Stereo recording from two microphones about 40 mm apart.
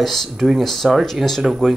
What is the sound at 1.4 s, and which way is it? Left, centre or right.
Speech, centre.